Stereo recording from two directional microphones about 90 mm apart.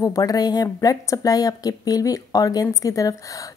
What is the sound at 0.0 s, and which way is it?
Speech, 40° left (ahead or behind).